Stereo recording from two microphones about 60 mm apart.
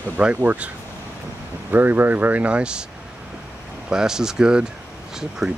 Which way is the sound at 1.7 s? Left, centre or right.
Right.